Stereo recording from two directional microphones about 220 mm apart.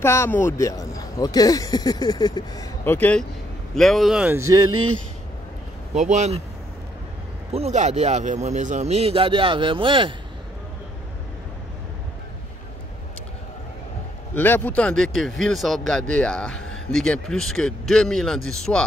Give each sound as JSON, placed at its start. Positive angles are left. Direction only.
{"t": 0.0, "sound": "speech", "side_deg": 10}
{"t": 4.6, "sound": "speech", "side_deg": -80}
{"t": 5.9, "sound": "speech", "side_deg": -30}
{"t": 7.5, "sound": "a man's voice", "side_deg": -30}
{"t": 14.3, "sound": "speech", "side_deg": 10}